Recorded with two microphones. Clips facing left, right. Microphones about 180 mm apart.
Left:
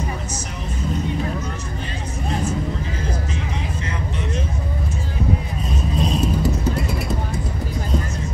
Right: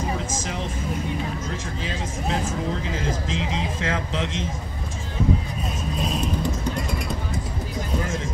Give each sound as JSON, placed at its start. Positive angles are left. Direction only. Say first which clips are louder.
{"t": 3.0, "sound": "vehicle", "louder": "right 1 dB", "side_deg": -90}
{"t": 5.9, "sound": "vehicle", "louder": "left 5 dB", "side_deg": 0}